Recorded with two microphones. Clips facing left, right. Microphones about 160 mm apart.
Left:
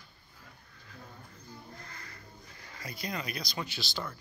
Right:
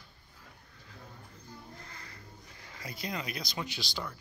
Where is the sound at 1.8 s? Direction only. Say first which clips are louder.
Left 1 dB; 25° right (ahead or behind).